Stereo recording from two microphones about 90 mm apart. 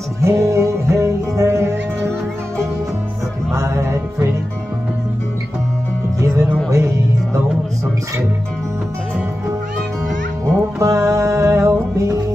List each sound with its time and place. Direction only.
0.2 s music: 35° right (ahead or behind)
3.5 s music: 35° right (ahead or behind)
6.1 s music: 35° right (ahead or behind)
10.8 s music: 35° right (ahead or behind)